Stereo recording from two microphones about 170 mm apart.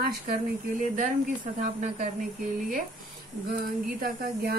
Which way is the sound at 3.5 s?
60° right (ahead or behind).